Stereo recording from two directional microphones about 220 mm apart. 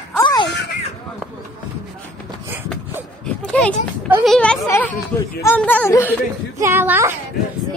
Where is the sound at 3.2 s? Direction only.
5° left (ahead or behind).